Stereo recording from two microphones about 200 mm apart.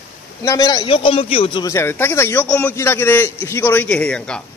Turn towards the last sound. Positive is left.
turn(degrees=5)  # may be behind; listen again after turning